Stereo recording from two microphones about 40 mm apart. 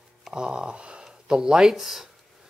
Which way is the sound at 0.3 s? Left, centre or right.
Right.